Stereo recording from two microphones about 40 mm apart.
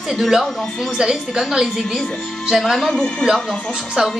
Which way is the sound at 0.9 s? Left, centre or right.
Centre.